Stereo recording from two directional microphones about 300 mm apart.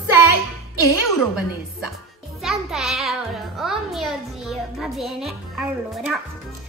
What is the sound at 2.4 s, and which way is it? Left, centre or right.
A child's voice, centre.